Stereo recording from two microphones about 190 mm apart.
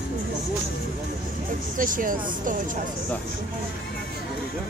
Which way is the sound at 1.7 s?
45° right (ahead or behind).